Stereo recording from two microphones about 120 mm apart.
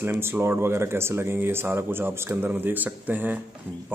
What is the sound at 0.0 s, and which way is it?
A man's voice, 20° right (ahead or behind).